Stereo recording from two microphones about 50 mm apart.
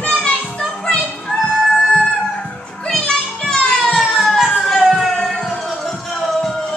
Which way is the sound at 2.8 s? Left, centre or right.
Centre.